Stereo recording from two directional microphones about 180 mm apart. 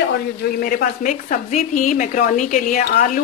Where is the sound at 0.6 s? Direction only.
55° left (ahead or behind).